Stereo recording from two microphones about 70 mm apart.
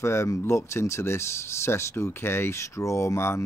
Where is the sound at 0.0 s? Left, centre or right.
Left.